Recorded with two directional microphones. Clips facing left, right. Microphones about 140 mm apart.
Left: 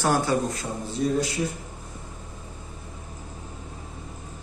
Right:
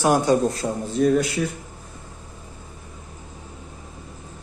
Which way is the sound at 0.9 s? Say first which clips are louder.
Right 6 dB; 65° right (ahead or behind).